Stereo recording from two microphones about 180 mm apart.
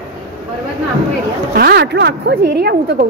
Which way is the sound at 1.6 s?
60° right (ahead or behind).